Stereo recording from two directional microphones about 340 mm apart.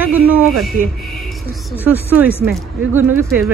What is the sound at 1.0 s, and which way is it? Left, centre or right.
Music, centre.